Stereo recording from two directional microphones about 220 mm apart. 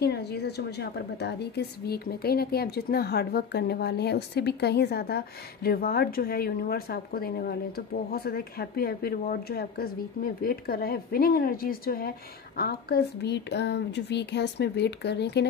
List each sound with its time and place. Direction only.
0.0 s a woman's voice: 50° left (ahead or behind)